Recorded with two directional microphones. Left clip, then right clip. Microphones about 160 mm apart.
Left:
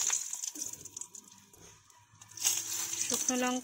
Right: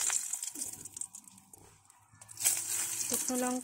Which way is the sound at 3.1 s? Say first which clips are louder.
Left 3 dB; 10° left (ahead or behind).